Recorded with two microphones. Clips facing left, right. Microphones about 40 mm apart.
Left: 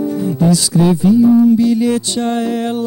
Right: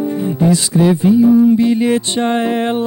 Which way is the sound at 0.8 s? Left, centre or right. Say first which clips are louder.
Even; centre.